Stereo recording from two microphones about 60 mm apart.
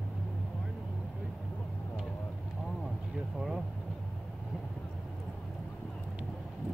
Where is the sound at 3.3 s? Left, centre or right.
Centre.